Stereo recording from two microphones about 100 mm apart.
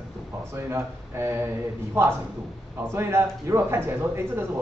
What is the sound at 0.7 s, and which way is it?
Speech, 25° right (ahead or behind).